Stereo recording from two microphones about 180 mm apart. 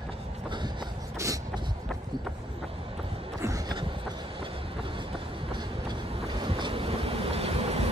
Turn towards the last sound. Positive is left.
turn(degrees=-35)  # may be behind; listen again after turning